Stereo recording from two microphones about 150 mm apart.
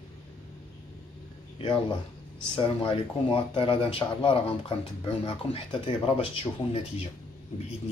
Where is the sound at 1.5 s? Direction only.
35° left (ahead or behind).